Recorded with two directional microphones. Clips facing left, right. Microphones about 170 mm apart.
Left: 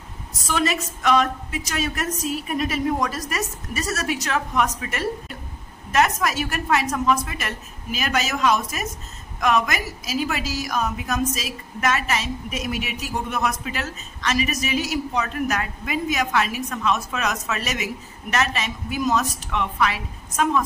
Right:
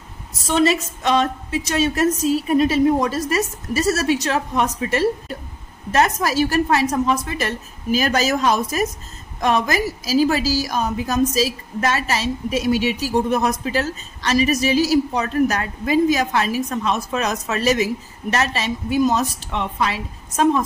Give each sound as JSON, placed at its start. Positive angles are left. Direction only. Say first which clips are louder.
{"t": 0.5, "sound": "a woman's voice", "louder": "right 6 dB", "side_deg": -25}